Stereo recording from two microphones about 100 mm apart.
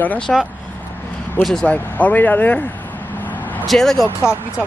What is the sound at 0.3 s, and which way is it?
Speech, 5° left (ahead or behind).